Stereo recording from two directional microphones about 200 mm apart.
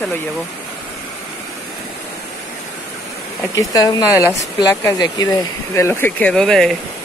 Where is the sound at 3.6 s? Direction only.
15° left (ahead or behind); by 6.7 s centre (ahead or behind).